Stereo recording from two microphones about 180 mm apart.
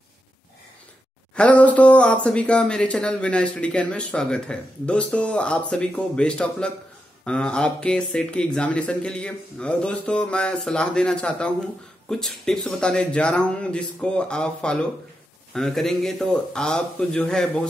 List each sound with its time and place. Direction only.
1.3 s speech: 5° left (ahead or behind)